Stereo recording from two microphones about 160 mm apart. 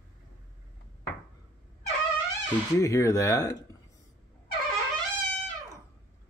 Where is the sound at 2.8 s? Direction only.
20° left (ahead or behind).